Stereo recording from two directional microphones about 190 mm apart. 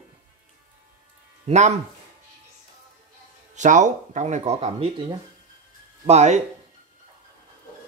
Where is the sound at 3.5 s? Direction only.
40° right (ahead or behind).